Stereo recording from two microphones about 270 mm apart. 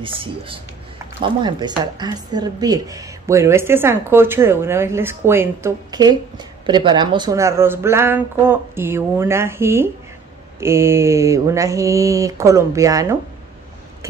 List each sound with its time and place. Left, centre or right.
0.0 s speech: centre
2.0 s a woman's voice: centre